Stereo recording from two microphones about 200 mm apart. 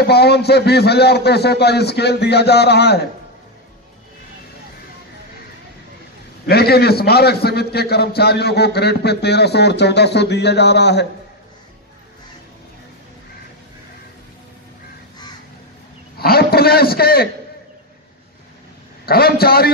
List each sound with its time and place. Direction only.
0.0 s a man's voice: 55° left (ahead or behind)
6.4 s a man's voice: 50° left (ahead or behind)
16.2 s a man's voice: 50° left (ahead or behind)
19.0 s a man's voice: 50° left (ahead or behind)